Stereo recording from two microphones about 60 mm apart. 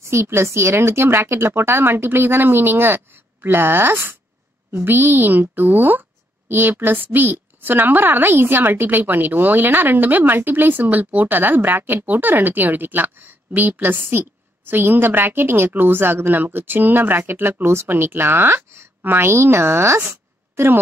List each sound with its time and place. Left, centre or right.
0.0 s a woman's voice: right
17.2 s speech: right
20.0 s a sound: right